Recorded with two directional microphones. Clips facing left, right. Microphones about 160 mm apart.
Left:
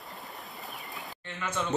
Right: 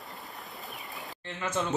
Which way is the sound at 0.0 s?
Centre (ahead or behind).